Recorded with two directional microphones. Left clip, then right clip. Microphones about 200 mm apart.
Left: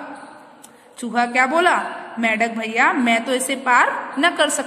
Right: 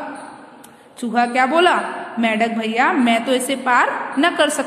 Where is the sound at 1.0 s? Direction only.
15° left (ahead or behind).